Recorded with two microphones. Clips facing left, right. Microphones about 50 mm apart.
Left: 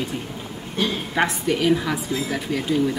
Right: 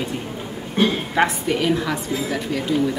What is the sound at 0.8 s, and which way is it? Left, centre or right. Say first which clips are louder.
Speech: right 5 dB; right.